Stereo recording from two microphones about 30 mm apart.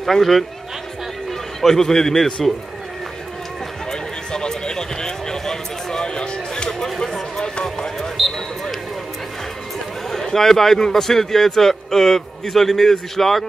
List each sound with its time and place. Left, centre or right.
0.0 s a man's voice: centre
1.6 s a man's voice: centre
3.9 s a sound: left
7.6 s basketball bounce: left
10.1 s a man's voice: centre